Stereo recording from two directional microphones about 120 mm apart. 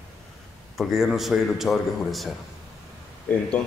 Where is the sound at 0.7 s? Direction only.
Centre (ahead or behind).